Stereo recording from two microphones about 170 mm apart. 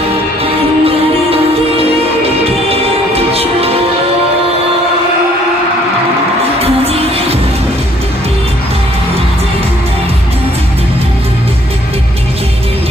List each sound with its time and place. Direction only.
0.4 s music: 35° right (ahead or behind)
6.6 s music: 35° right (ahead or behind)